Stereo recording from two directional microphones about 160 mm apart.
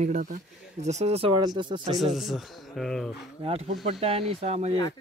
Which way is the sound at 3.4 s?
40° right (ahead or behind).